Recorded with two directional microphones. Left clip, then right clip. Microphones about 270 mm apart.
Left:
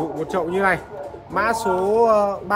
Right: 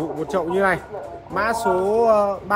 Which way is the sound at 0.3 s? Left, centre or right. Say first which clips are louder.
Even; centre.